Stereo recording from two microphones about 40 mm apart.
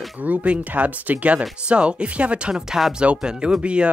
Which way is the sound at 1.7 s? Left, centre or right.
Right.